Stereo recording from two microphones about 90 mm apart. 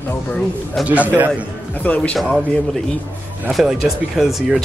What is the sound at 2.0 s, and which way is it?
Speech, 10° left (ahead or behind).